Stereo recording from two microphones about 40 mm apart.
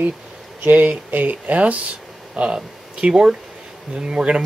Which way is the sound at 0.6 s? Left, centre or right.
Right.